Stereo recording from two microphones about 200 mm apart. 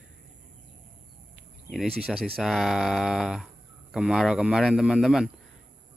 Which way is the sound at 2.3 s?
Centre (ahead or behind).